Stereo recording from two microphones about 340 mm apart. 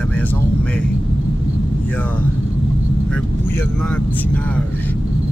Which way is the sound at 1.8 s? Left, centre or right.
Centre.